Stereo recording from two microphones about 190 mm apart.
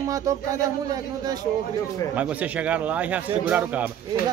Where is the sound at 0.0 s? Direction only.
15° right (ahead or behind).